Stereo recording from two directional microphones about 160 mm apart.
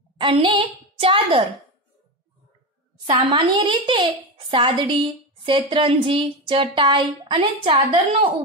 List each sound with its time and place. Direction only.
0.2 s a woman's voice: 30° right (ahead or behind)
3.1 s a child's voice: 30° right (ahead or behind)